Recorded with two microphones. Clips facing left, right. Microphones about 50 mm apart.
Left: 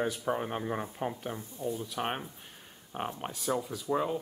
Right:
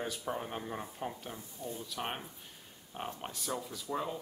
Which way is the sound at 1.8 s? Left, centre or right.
Left.